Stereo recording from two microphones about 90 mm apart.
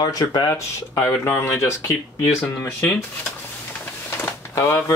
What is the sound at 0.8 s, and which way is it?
Speech, 30° left (ahead or behind).